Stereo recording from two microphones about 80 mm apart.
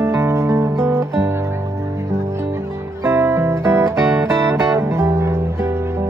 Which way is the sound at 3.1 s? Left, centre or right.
Right.